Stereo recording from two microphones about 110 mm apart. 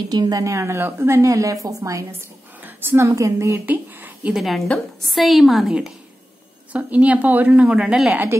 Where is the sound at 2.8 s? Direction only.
20° right (ahead or behind).